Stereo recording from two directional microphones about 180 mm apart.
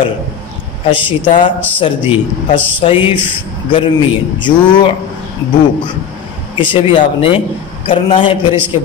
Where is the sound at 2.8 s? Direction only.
30° left (ahead or behind).